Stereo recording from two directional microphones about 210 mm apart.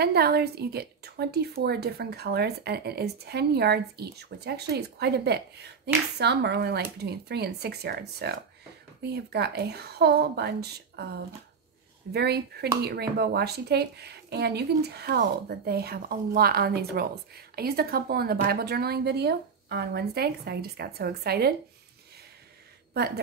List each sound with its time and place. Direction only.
0.0 s speech: 50° right (ahead or behind)